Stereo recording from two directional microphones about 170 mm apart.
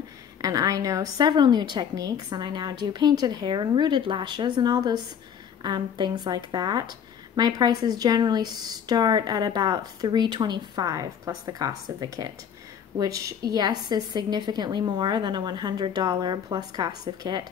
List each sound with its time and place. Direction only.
0.4 s speech: 20° right (ahead or behind)